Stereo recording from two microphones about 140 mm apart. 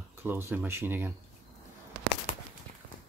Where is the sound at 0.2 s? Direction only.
15° right (ahead or behind).